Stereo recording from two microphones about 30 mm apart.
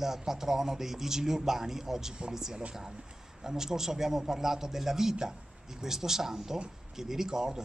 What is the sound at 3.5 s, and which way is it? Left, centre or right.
A man's voice, centre.